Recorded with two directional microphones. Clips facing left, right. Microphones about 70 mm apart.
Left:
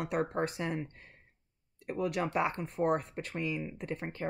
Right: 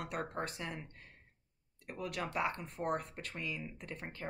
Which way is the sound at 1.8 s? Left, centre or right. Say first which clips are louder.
Left 8 dB; left.